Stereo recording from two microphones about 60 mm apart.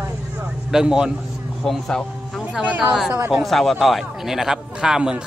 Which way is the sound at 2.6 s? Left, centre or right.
Right.